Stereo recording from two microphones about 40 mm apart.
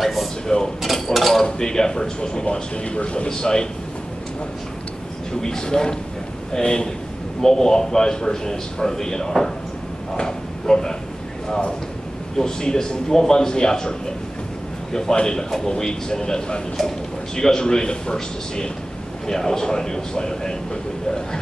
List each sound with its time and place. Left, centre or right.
0.0 s speech: centre
0.5 s speech: left
0.8 s mechanisms: centre
1.4 s speech: centre
3.3 s a man's voice: centre
5.4 s a man's voice: centre
12.4 s a man's voice: centre